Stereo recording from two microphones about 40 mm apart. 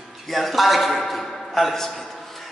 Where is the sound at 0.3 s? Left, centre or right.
Centre.